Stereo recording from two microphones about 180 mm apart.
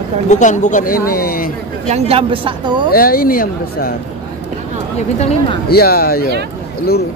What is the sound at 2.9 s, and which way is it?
Speech, 55° left (ahead or behind).